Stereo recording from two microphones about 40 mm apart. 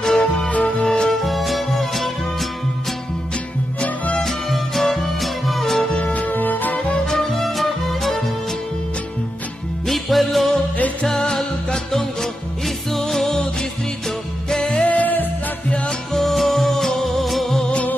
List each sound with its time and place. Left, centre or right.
0.0 s music: centre
0.5 s music: left
0.8 s music: centre
1.2 s music: centre
3.8 s music: left
4.2 s music: centre
5.9 s music: left
7.1 s music: centre
9.8 s music: centre
11.2 s music: centre
14.5 s music: left
14.9 s music: left
16.1 s music: centre